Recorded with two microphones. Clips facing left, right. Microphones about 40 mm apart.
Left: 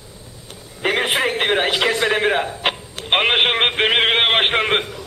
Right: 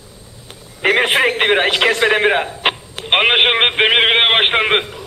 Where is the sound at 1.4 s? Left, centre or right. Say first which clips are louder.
Right 4 dB; centre.